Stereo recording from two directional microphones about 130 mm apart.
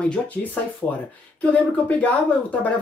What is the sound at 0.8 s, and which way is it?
Speech, 20° left (ahead or behind).